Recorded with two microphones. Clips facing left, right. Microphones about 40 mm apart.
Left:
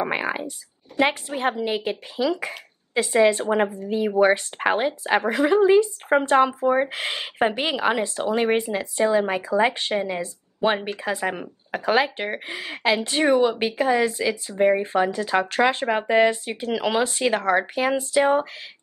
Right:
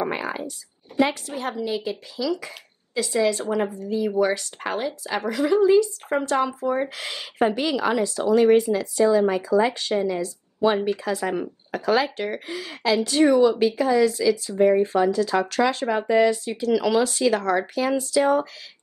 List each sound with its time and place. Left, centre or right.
0.1 s speech: left